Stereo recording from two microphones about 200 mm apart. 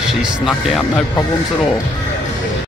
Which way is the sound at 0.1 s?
Centre (ahead or behind).